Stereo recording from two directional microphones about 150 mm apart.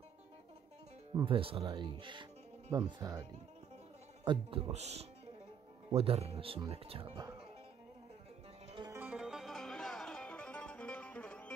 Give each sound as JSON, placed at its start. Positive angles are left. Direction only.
{"t": 1.2, "sound": "speech", "side_deg": -35}
{"t": 4.2, "sound": "speech", "side_deg": -35}
{"t": 8.9, "sound": "music", "side_deg": -10}